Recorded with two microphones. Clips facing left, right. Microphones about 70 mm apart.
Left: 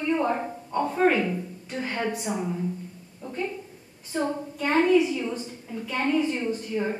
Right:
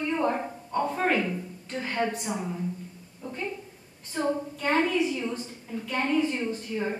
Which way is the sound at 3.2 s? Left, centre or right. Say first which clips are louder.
Even; centre.